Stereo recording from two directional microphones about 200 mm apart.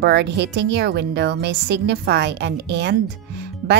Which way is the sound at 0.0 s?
60° right (ahead or behind).